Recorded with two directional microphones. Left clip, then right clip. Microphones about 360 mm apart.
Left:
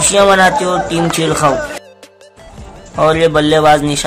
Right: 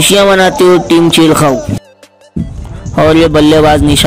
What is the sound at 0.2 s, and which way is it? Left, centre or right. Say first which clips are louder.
Speech: left 2 dB; centre.